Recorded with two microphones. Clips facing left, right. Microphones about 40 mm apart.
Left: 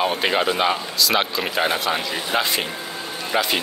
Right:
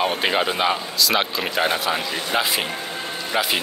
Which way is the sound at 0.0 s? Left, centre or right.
Centre.